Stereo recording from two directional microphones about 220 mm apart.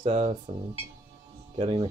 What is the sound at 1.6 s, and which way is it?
Speech, 25° right (ahead or behind).